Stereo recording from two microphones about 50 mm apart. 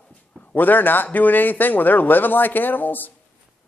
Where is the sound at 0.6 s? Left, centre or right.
Left.